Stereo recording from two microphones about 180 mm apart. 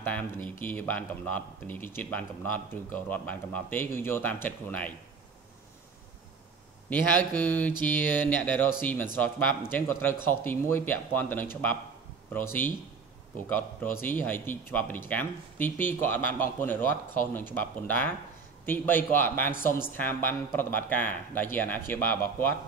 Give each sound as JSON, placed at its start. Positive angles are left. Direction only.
{"t": 0.0, "sound": "speech", "side_deg": 10}
{"t": 6.9, "sound": "speech", "side_deg": 10}